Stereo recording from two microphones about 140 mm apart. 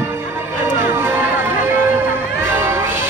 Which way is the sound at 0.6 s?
15° right (ahead or behind).